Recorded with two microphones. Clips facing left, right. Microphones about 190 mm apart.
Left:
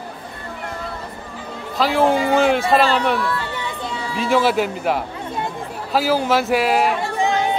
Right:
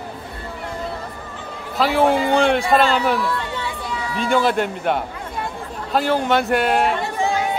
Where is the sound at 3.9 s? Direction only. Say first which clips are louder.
Even; 30° left (ahead or behind).